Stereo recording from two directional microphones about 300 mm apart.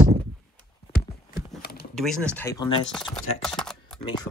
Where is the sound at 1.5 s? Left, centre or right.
Left.